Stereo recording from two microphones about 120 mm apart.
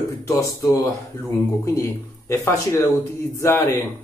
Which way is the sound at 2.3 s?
25° left (ahead or behind).